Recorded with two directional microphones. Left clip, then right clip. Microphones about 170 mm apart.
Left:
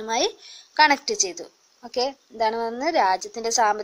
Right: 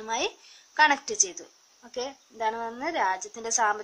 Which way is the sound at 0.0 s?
25° left (ahead or behind).